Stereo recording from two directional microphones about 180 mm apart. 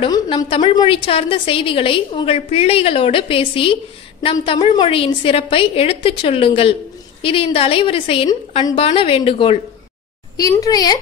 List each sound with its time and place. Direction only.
0.0 s a woman's voice: 25° left (ahead or behind)
10.3 s a woman's voice: 20° left (ahead or behind)